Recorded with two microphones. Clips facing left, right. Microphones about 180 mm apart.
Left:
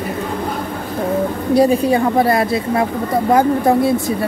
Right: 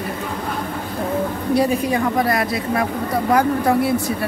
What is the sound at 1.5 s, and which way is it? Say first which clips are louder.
A woman's voice: left 6 dB; 30° left (ahead or behind).